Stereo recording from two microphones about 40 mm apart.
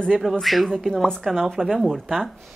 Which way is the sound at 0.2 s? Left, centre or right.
Centre.